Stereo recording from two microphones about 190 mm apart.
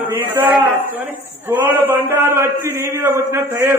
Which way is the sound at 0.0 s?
10° right (ahead or behind).